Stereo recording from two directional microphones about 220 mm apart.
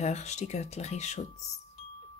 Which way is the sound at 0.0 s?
30° left (ahead or behind).